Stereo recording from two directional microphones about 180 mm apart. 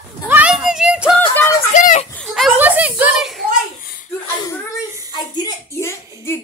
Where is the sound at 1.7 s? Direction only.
45° left (ahead or behind).